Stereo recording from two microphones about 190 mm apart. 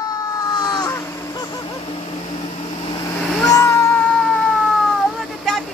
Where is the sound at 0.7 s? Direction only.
20° left (ahead or behind).